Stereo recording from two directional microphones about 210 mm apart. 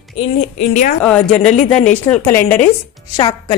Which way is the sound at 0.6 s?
35° left (ahead or behind).